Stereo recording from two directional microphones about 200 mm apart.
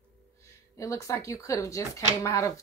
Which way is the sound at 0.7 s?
15° left (ahead or behind).